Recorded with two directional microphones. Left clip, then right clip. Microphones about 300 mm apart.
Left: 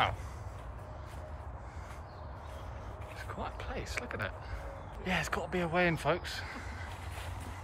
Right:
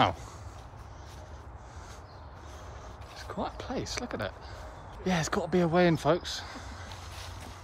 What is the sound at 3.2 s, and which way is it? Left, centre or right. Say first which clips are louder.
Speech: right 6 dB; centre.